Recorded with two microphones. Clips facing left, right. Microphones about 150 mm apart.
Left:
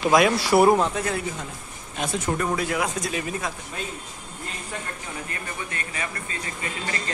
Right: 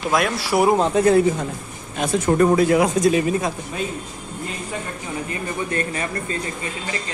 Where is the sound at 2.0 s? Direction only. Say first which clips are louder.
Right 9 dB; 50° right (ahead or behind).